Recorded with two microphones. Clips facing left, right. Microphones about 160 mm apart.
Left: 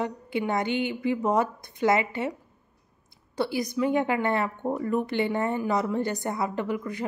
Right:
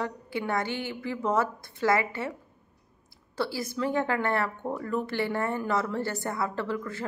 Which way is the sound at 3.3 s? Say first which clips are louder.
Left 4 dB; 20° left (ahead or behind).